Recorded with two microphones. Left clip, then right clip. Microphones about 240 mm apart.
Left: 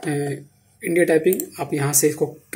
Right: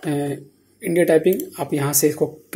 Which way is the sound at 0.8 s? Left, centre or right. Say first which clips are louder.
Right 1 dB; centre.